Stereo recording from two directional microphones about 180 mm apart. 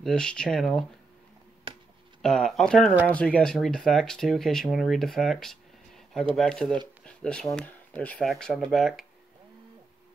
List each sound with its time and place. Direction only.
0.0 s speech: 5° left (ahead or behind)
1.7 s a sound: 30° right (ahead or behind)
2.2 s speech: centre (ahead or behind)